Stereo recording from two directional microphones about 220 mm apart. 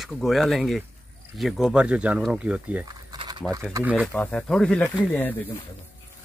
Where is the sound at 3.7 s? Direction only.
5° right (ahead or behind).